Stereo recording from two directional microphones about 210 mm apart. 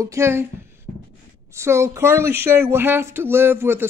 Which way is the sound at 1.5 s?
15° right (ahead or behind).